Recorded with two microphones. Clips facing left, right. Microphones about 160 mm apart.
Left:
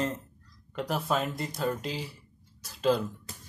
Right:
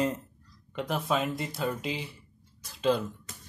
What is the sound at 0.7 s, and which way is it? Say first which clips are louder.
Speech: even; centre (ahead or behind).